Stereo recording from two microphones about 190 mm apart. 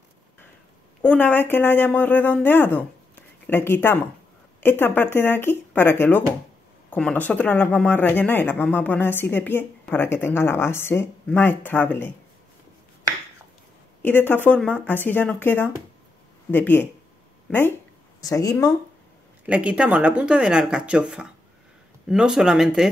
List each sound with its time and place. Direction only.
1.0 s speech: 10° left (ahead or behind)
14.0 s speech: 10° left (ahead or behind)
19.4 s speech: 5° right (ahead or behind)